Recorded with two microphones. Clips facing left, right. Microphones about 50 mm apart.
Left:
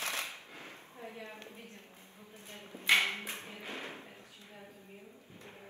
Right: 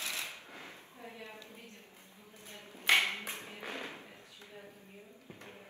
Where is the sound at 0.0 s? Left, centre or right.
Left.